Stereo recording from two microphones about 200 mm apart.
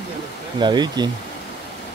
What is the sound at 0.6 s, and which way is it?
Speech, 20° right (ahead or behind).